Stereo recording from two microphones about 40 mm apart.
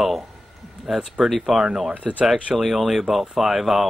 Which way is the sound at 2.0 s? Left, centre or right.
Right.